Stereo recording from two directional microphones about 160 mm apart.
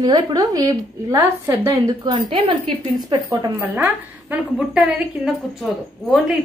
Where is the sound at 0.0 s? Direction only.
25° right (ahead or behind).